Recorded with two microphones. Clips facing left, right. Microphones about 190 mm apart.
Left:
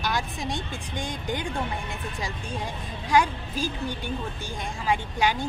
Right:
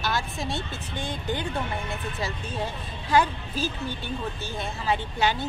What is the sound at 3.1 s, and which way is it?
A woman's voice, 15° left (ahead or behind).